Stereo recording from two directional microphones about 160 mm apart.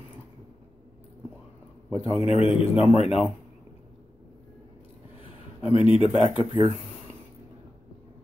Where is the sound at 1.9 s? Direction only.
40° left (ahead or behind).